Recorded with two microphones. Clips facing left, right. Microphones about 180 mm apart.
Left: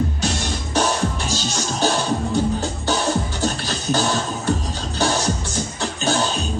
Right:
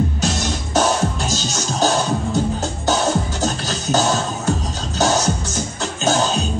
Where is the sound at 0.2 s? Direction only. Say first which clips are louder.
Right 2 dB; 40° right (ahead or behind).